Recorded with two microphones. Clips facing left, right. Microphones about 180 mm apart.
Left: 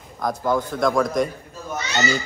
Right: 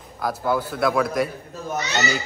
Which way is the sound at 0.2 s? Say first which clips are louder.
Left 1 dB; 5° right (ahead or behind).